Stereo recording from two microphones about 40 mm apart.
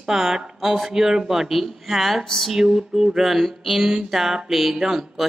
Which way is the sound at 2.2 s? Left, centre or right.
Centre.